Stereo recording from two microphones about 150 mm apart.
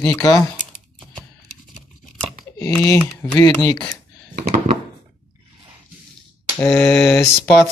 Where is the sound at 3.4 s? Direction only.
25° left (ahead or behind).